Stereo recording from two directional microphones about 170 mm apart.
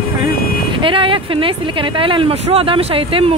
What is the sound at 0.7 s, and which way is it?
Speech, 30° right (ahead or behind).